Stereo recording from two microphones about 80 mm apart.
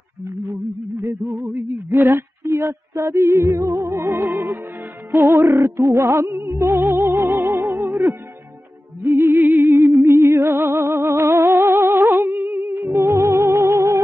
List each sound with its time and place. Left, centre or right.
1.0 s speech: right
5.1 s music: right